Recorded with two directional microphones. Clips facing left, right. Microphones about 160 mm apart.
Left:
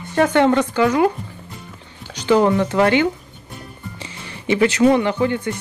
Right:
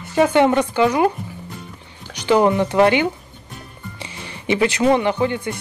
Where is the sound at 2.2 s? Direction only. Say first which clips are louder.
Even; 15° right (ahead or behind).